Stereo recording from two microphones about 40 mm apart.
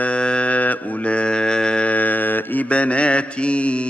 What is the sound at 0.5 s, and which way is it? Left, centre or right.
Mantra, left.